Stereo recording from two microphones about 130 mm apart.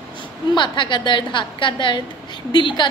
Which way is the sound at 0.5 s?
35° left (ahead or behind).